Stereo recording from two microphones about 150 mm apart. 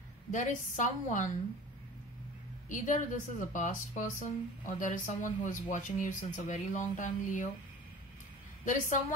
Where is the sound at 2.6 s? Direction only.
55° left (ahead or behind).